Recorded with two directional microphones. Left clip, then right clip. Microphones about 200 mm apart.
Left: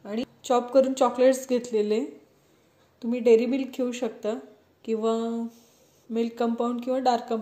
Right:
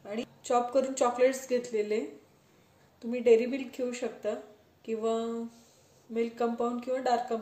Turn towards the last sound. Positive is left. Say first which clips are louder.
# left 4 dB
turn(degrees=40)  # may be behind; listen again after turning